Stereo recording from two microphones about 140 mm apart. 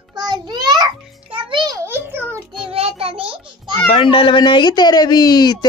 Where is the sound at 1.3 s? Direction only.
35° right (ahead or behind).